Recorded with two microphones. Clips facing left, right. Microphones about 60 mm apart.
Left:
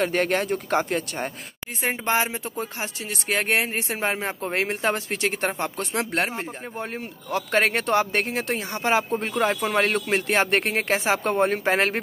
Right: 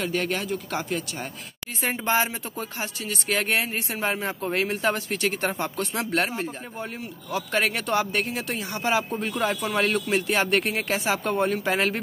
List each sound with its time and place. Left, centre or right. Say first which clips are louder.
0.0 s speech: left 4 dB; left
1.8 s speech: even; left
6.8 s speech: left 3 dB; left